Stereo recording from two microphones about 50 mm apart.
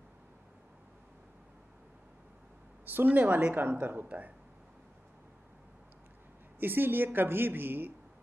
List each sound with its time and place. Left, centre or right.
2.8 s speech: right
6.6 s a woman's voice: right